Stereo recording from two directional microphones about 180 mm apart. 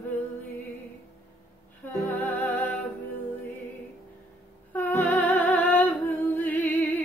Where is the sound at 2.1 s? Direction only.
10° left (ahead or behind).